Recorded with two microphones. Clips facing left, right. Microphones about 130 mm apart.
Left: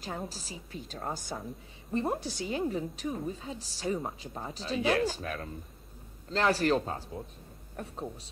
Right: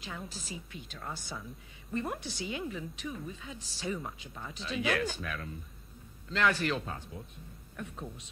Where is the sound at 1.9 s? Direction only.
30° left (ahead or behind).